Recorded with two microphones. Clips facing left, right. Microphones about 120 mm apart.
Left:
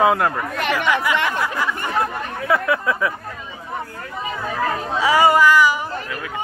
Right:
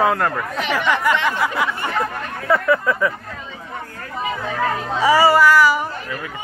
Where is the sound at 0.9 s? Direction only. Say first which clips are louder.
Right 3 dB; 5° left (ahead or behind).